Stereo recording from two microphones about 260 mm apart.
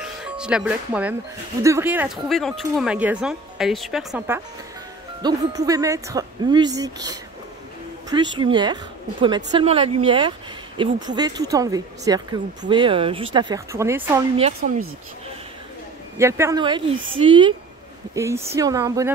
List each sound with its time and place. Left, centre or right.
0.2 s speech: centre
5.2 s speech: centre
14.6 s speech: right
16.2 s speech: centre